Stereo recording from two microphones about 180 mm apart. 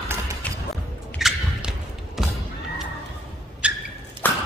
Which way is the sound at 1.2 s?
Centre (ahead or behind).